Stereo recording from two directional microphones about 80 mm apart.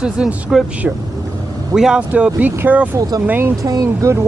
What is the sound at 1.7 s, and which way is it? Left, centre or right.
Speech, centre.